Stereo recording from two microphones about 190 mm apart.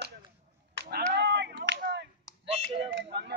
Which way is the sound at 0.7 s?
60° right (ahead or behind).